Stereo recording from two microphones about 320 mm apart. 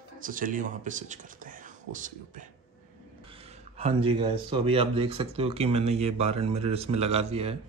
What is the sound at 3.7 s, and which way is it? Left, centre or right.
Speech, centre.